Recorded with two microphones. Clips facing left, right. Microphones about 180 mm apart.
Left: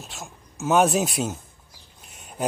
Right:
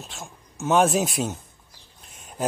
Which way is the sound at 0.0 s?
Centre (ahead or behind).